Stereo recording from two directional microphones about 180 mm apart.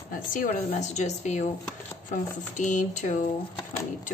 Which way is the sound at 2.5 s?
45° left (ahead or behind).